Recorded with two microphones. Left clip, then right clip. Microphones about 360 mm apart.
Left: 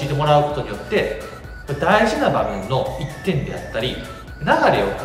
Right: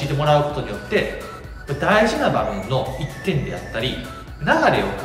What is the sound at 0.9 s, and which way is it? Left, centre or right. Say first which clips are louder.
Speech: left 1 dB; centre.